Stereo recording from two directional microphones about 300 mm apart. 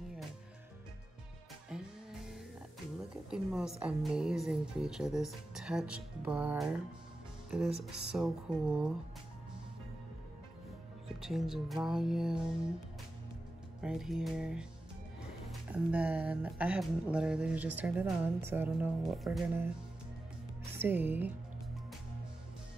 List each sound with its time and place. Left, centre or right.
1.7 s music: centre
3.3 s speech: centre
11.1 s speech: centre
13.7 s speech: centre
15.7 s speech: centre
20.7 s a woman's voice: centre